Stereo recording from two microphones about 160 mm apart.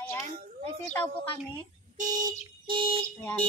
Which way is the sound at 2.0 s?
55° right (ahead or behind).